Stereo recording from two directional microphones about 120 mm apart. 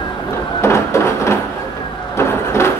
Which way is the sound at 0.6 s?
25° left (ahead or behind).